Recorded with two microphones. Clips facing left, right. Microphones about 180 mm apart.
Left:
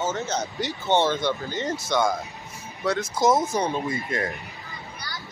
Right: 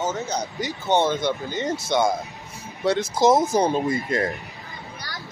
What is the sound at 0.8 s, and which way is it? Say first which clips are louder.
Speech: right 1 dB; 15° right (ahead or behind).